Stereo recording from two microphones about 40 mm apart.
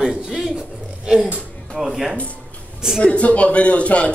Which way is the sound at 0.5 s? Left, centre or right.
Centre.